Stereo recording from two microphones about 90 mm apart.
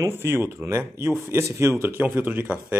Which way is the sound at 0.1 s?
25° right (ahead or behind).